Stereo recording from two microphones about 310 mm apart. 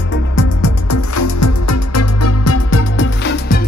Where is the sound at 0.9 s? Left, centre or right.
Left.